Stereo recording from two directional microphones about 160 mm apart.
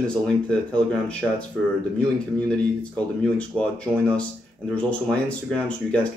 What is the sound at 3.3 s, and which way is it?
Speech, 5° left (ahead or behind).